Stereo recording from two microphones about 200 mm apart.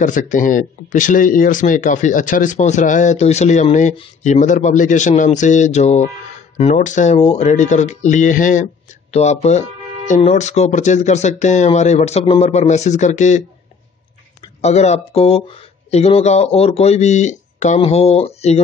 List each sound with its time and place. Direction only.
0.0 s speech: 40° left (ahead or behind)
14.6 s speech: 35° left (ahead or behind)